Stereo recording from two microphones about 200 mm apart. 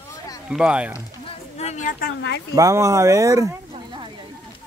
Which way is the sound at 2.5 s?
15° right (ahead or behind).